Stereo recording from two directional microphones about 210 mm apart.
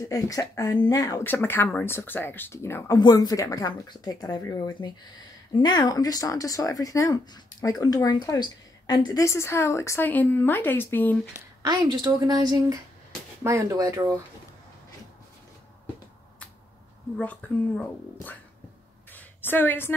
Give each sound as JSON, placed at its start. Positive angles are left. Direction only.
{"t": 0.0, "sound": "speech", "side_deg": 15}
{"t": 11.6, "sound": "a woman's voice", "side_deg": -20}
{"t": 17.2, "sound": "speech", "side_deg": 5}
{"t": 19.1, "sound": "a sound", "side_deg": 10}